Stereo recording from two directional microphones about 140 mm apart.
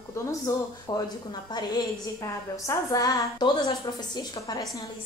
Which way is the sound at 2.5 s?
25° left (ahead or behind).